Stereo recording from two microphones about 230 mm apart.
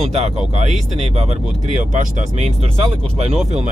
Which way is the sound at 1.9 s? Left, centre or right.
Right.